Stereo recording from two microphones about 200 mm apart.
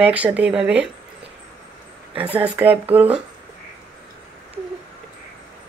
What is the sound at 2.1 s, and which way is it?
Speech, 5° right (ahead or behind).